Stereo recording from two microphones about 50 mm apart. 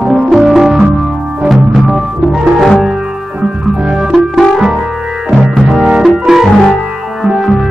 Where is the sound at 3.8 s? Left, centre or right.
Centre.